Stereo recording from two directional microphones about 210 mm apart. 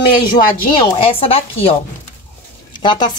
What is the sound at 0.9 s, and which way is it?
Speech, 25° left (ahead or behind).